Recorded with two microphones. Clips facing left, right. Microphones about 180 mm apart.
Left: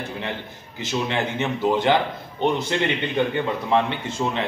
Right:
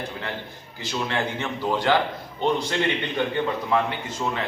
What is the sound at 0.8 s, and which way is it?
A man's voice, 20° left (ahead or behind).